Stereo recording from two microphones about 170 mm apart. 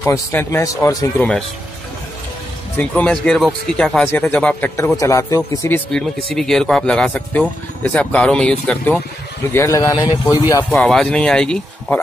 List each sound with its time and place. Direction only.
0.0 s a man's voice: 15° left (ahead or behind)
2.8 s a man's voice: 10° left (ahead or behind)
5.9 s a man's voice: 5° left (ahead or behind)
9.5 s speech: 15° left (ahead or behind)
10.6 s speech: 5° left (ahead or behind)